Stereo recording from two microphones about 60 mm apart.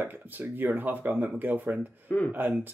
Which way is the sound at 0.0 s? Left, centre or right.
Right.